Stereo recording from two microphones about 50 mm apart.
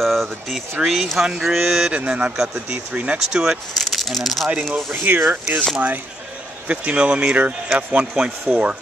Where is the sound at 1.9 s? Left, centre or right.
Right.